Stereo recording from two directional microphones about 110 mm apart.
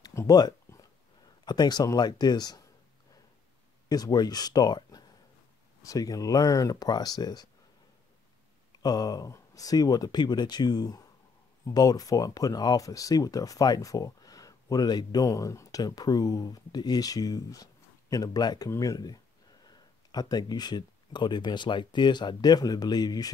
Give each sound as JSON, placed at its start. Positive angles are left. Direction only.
{"t": 0.0, "sound": "a sound", "side_deg": 30}
{"t": 1.4, "sound": "speech", "side_deg": 40}
{"t": 3.9, "sound": "speech", "side_deg": 35}
{"t": 8.8, "sound": "speech", "side_deg": 35}